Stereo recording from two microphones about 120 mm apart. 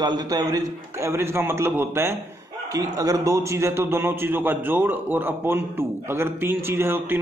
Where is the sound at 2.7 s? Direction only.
30° right (ahead or behind).